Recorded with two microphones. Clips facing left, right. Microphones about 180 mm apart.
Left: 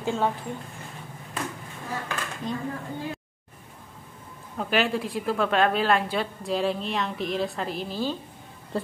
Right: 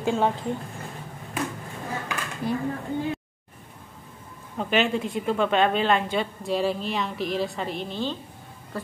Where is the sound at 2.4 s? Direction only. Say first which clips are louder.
Right 5 dB; 10° right (ahead or behind).